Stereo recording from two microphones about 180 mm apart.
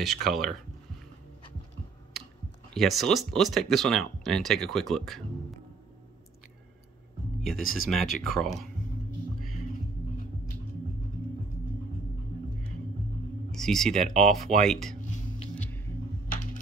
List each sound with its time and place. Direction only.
0.0 s speech: centre (ahead or behind)
2.7 s speech: centre (ahead or behind)
7.4 s speech: centre (ahead or behind)
13.5 s speech: centre (ahead or behind)
14.0 s speech: 40° right (ahead or behind)
14.6 s speech: centre (ahead or behind)
15.6 s a sound: 10° left (ahead or behind)